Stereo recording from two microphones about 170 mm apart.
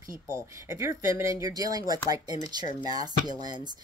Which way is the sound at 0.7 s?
15° right (ahead or behind).